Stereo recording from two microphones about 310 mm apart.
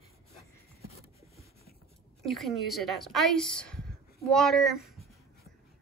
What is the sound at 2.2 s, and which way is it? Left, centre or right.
A woman's voice, centre.